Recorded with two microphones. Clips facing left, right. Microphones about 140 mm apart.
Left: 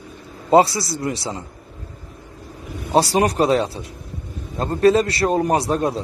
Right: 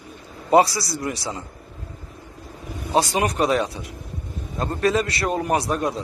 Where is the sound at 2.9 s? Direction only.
35° left (ahead or behind).